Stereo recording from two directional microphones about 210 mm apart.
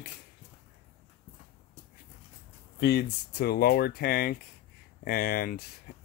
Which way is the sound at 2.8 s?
55° left (ahead or behind).